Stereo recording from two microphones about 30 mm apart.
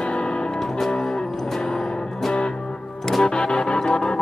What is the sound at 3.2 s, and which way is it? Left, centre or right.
Music, left.